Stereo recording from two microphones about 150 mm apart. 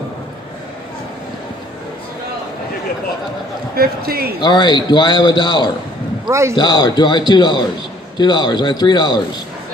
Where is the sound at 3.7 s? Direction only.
90° right.